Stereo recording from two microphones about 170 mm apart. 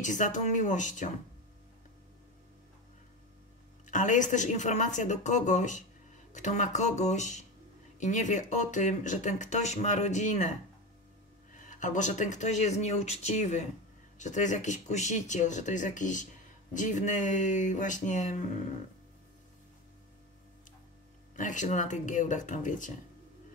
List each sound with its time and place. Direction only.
0.0 s speech: 45° left (ahead or behind)
3.8 s speech: 50° left (ahead or behind)
11.5 s speech: 50° left (ahead or behind)
21.4 s speech: 50° left (ahead or behind)